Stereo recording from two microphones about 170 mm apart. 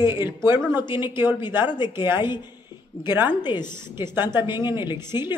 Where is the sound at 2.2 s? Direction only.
25° left (ahead or behind).